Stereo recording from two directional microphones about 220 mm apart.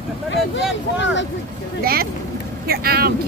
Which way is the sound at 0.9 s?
55° left (ahead or behind).